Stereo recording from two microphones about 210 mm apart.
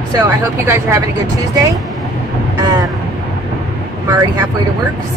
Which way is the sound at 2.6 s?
15° right (ahead or behind).